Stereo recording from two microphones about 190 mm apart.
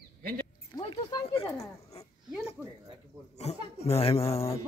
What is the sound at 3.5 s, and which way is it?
Speech, 35° left (ahead or behind).